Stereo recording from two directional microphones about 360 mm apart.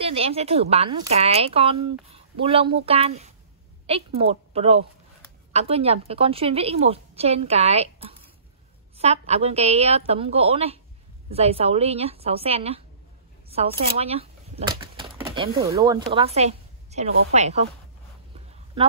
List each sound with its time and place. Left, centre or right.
0.0 s a woman's voice: centre
13.5 s a sound: centre
15.6 s a woman's voice: centre